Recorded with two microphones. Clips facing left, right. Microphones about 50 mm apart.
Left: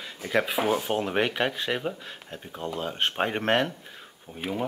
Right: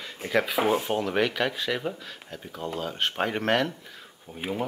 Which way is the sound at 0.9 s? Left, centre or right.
Centre.